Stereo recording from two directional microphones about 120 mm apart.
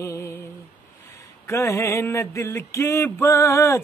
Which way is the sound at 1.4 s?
20° left (ahead or behind).